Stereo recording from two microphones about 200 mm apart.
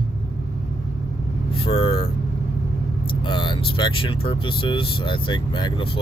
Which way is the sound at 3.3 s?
25° left (ahead or behind).